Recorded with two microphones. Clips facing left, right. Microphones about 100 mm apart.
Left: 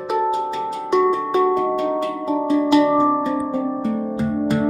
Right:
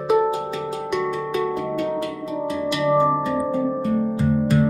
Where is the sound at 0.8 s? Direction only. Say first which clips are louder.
Left 9 dB; 30° left (ahead or behind).